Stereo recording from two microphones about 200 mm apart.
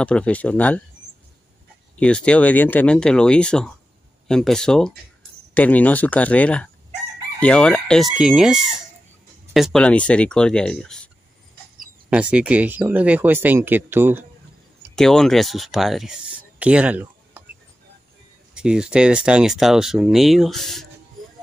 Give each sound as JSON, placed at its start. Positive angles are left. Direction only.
{"t": 0.0, "sound": "speech", "side_deg": 5}
{"t": 2.0, "sound": "speech", "side_deg": 5}
{"t": 12.1, "sound": "speech", "side_deg": -5}
{"t": 15.0, "sound": "speech", "side_deg": 0}
{"t": 18.5, "sound": "speech", "side_deg": -5}